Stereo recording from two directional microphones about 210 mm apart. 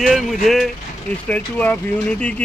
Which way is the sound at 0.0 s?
Centre (ahead or behind).